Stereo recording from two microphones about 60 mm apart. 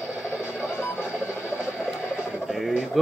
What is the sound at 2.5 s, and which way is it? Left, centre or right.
Bird, centre.